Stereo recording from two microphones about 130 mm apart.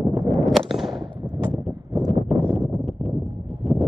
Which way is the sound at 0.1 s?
Centre (ahead or behind).